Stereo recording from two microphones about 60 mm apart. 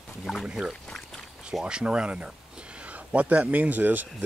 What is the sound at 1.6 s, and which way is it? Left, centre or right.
Speech, centre.